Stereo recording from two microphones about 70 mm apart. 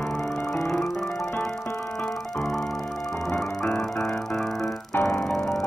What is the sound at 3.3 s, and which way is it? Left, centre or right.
Music, left.